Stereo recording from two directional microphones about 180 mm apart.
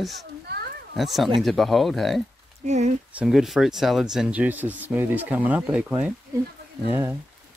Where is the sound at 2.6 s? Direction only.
40° right (ahead or behind).